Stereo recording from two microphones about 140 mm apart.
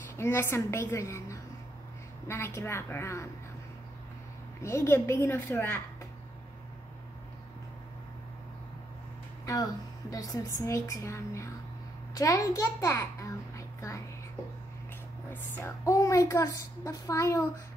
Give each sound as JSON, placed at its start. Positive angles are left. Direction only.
{"t": 0.1, "sound": "a woman's voice", "side_deg": 20}
{"t": 4.6, "sound": "a woman's voice", "side_deg": 20}
{"t": 9.5, "sound": "a woman's voice", "side_deg": 25}
{"t": 15.3, "sound": "a woman's voice", "side_deg": 15}